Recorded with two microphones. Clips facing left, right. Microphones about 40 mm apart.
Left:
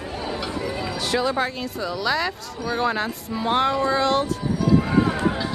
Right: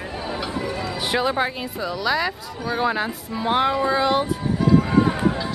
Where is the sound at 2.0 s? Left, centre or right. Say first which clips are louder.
Right 1 dB; centre.